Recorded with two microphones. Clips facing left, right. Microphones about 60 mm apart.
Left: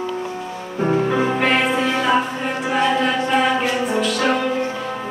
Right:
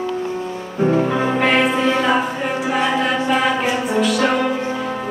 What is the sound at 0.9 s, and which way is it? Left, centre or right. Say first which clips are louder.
Music: left 2 dB; centre.